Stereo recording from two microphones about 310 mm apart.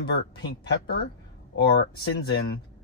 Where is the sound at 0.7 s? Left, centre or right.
Left.